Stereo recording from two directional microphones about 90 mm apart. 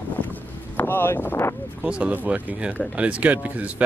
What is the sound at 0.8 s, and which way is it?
Speech, 25° left (ahead or behind).